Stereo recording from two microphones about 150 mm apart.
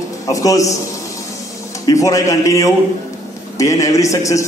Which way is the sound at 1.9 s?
25° left (ahead or behind).